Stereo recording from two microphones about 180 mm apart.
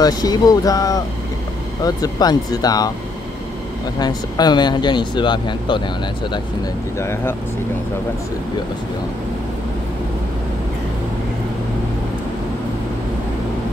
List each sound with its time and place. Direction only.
0.0 s speech: 20° left (ahead or behind)
4.0 s speech: 20° left (ahead or behind)
7.0 s speech: 15° left (ahead or behind)